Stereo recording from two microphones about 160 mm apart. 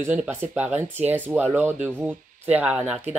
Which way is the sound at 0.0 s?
10° right (ahead or behind).